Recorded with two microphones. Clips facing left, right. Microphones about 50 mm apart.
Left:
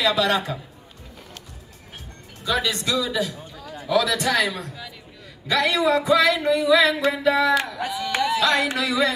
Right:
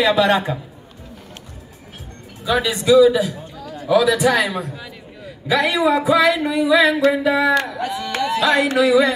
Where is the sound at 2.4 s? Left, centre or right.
Centre.